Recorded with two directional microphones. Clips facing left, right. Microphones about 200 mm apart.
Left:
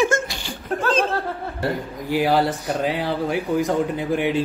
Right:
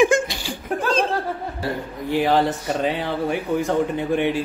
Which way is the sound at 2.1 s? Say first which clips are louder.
Even; 10° left (ahead or behind).